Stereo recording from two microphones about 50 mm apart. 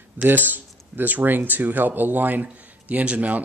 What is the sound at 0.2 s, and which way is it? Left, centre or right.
Speech, right.